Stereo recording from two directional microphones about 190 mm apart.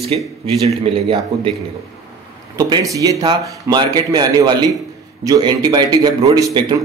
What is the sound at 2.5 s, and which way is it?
Speech, 15° right (ahead or behind).